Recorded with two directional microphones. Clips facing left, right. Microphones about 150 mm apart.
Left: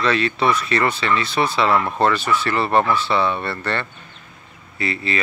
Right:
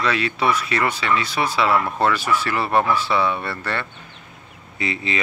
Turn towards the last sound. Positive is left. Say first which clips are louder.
# left 1 dB
turn(degrees=-20)  # may be behind; listen again after turning